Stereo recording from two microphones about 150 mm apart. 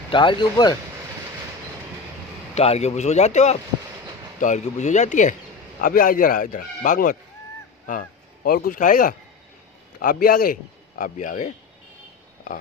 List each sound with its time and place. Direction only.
0.1 s speech: 30° left (ahead or behind)
2.5 s speech: 45° left (ahead or behind)
5.8 s a man's voice: 65° left (ahead or behind)
9.9 s a man's voice: 75° left (ahead or behind); by 11.5 s 55° left (ahead or behind)